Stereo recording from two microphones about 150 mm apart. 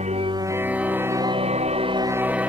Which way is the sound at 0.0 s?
45° right (ahead or behind).